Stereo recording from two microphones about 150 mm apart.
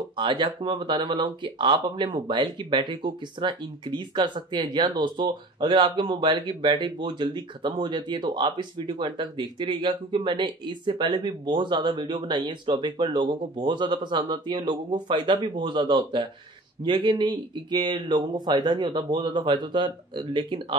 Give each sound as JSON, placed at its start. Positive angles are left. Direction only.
{"t": 0.2, "sound": "speech", "side_deg": -35}